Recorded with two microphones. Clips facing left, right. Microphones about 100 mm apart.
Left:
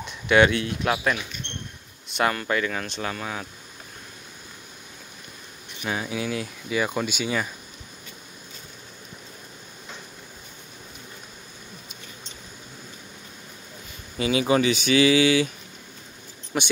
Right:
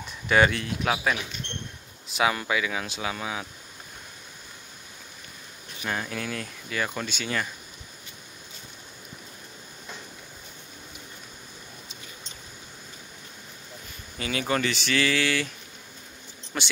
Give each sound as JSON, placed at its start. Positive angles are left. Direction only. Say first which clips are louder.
{"t": 0.3, "sound": "speech", "louder": "left 3 dB", "side_deg": 0}
{"t": 2.0, "sound": "a sound", "louder": "left 1 dB", "side_deg": 0}
{"t": 2.3, "sound": "speech", "louder": "left 2 dB", "side_deg": -5}
{"t": 5.9, "sound": "speech", "louder": "left 3 dB", "side_deg": 10}
{"t": 14.1, "sound": "speech", "louder": "left 6 dB", "side_deg": 20}
{"t": 16.5, "sound": "speech", "louder": "left 5 dB", "side_deg": 10}